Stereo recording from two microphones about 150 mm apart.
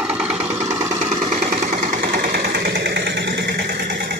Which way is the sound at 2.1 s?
90° right.